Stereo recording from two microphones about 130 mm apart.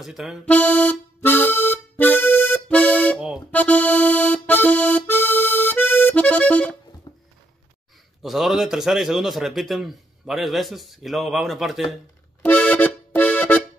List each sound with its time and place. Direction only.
0.0 s a man's voice: 5° right (ahead or behind)
0.5 s accordion: 10° left (ahead or behind)
7.1 s a sound: 30° left (ahead or behind)
8.2 s a man's voice: centre (ahead or behind)
12.4 s accordion: 10° left (ahead or behind)